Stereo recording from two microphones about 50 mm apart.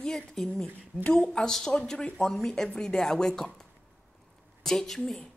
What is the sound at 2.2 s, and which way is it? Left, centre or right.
A woman's voice, centre.